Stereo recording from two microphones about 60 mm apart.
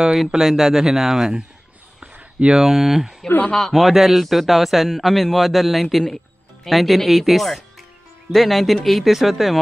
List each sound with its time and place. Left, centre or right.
0.3 s speech: centre
2.4 s speech: centre